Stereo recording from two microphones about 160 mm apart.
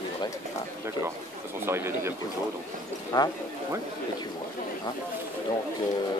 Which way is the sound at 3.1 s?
25° left (ahead or behind).